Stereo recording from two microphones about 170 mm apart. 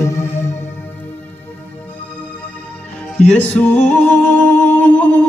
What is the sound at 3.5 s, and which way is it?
Music, 10° left (ahead or behind).